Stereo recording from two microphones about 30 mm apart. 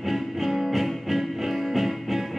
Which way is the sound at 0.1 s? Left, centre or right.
Centre.